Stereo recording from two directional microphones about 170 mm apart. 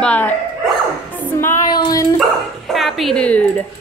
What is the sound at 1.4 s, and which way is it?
Female singing, 20° left (ahead or behind).